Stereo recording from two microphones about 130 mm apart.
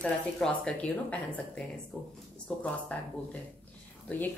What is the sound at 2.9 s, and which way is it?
Speech, 10° left (ahead or behind).